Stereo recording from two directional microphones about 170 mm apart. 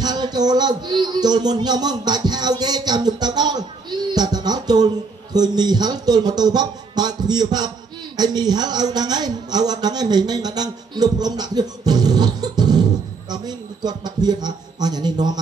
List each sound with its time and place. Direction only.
0.0 s a man's voice: 25° right (ahead or behind)